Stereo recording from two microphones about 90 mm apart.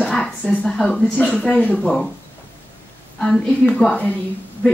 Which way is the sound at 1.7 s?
5° left (ahead or behind).